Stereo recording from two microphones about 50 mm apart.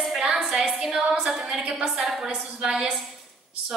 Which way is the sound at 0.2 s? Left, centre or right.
Centre.